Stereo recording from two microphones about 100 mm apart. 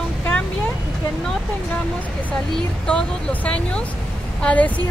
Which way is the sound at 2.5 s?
10° left (ahead or behind).